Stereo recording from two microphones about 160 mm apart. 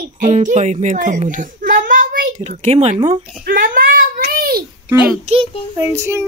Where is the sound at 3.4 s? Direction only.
60° right (ahead or behind).